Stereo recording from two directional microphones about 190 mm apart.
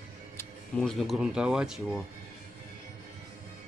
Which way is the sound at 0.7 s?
Centre (ahead or behind).